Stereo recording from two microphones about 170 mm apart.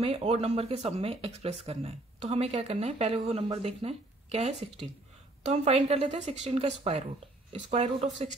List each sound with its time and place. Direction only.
0.0 s speech: 35° right (ahead or behind)